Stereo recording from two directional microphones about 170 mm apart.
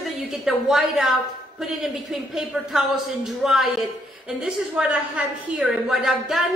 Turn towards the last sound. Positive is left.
turn(degrees=0)  # may be behind; listen again after turning